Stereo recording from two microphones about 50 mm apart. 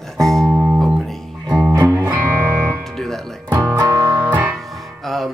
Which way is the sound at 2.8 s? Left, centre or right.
Centre.